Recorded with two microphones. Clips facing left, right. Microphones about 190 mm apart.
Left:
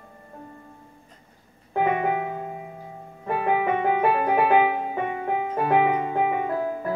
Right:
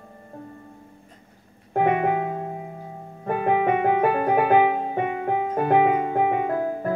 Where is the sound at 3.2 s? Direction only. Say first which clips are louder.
Right 2 dB; 50° right (ahead or behind).